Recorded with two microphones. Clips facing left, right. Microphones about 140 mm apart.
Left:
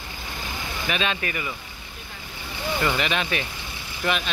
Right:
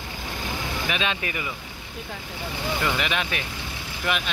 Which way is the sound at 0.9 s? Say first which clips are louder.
Left 3 dB; 15° right (ahead or behind).